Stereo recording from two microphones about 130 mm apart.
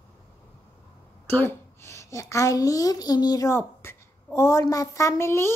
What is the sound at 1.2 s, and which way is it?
A child's voice, 20° left (ahead or behind).